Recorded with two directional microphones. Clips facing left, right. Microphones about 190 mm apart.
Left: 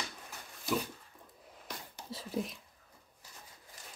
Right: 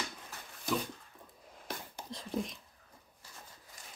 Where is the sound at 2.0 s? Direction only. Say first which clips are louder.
Even; 5° left (ahead or behind).